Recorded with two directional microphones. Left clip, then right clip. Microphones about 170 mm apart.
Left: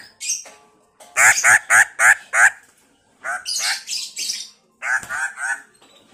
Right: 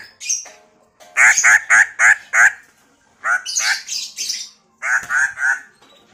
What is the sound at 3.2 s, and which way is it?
Speech, 5° left (ahead or behind).